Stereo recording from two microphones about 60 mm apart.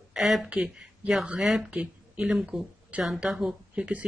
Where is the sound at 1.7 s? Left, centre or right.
Centre.